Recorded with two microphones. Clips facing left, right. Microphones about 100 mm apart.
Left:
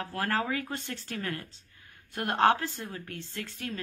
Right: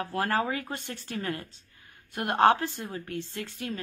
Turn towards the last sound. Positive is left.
turn(degrees=-15)  # may be behind; listen again after turning